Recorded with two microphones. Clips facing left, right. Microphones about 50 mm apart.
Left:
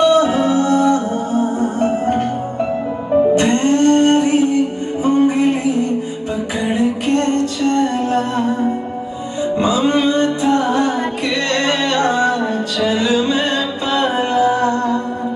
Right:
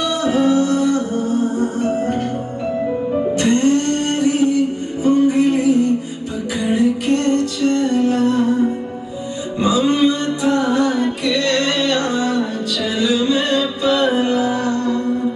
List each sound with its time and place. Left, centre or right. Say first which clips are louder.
0.0 s music: left 4 dB; left
3.3 s music: left 1 dB; left
9.6 s music: right 1 dB; left